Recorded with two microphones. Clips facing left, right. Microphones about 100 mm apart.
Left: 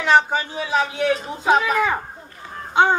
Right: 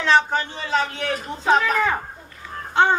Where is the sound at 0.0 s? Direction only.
10° left (ahead or behind).